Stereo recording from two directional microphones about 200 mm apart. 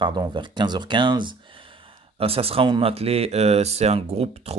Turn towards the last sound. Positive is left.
turn(degrees=-30)  # may be behind; listen again after turning